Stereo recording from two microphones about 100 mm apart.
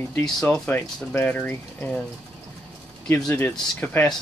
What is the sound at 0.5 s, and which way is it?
Speech, 20° left (ahead or behind).